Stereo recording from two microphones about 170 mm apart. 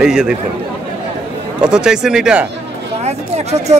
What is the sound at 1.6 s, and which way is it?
Speech, 5° right (ahead or behind).